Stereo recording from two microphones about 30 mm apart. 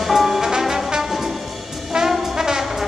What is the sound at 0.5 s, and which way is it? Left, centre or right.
Brass instrument, centre.